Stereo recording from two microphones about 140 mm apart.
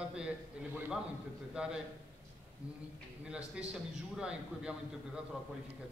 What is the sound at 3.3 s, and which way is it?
A man's voice, 5° right (ahead or behind).